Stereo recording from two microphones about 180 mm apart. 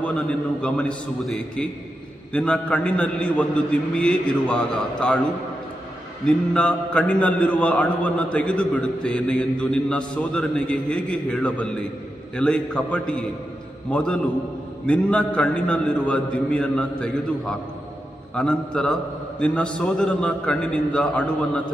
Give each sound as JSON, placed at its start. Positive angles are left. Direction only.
{"t": 0.0, "sound": "a man's voice", "side_deg": 5}
{"t": 6.2, "sound": "a man's voice", "side_deg": 5}